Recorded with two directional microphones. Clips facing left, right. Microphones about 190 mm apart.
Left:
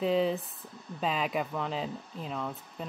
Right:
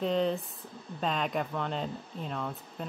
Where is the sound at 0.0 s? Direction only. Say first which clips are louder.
Left 1 dB; 5° left (ahead or behind).